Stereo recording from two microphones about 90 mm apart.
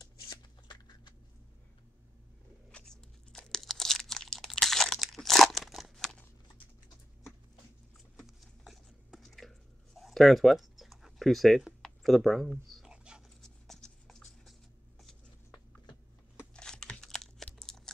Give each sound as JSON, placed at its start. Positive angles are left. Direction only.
{"t": 0.7, "sound": "a sound", "side_deg": 55}
{"t": 2.7, "sound": "crunch", "side_deg": 5}
{"t": 8.2, "sound": "biting", "side_deg": 0}
{"t": 13.7, "sound": "music", "side_deg": 5}
{"t": 16.5, "sound": "tearing", "side_deg": 10}